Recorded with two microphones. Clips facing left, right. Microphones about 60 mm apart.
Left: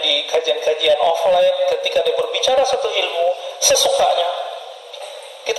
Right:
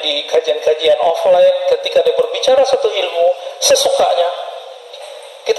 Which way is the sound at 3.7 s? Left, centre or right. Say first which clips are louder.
Right 4 dB; right.